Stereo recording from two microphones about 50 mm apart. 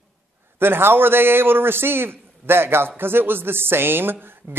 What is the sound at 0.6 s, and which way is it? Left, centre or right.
Speech, right.